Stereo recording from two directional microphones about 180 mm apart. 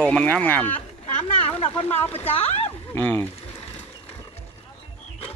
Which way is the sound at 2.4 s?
35° left (ahead or behind).